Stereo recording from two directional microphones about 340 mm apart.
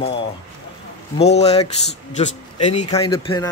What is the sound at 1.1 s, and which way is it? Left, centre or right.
A man's voice, centre.